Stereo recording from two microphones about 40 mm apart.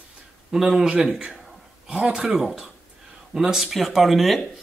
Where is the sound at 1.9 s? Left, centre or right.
Right.